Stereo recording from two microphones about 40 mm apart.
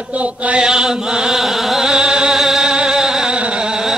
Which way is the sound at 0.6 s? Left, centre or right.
Centre.